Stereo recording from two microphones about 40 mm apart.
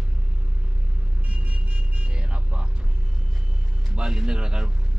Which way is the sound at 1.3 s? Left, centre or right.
Right.